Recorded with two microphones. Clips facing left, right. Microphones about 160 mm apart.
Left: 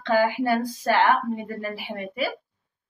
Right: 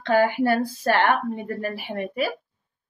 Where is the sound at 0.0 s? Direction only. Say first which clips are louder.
Right 2 dB; 60° right (ahead or behind).